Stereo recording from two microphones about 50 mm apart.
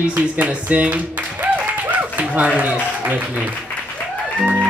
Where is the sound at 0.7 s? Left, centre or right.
Right.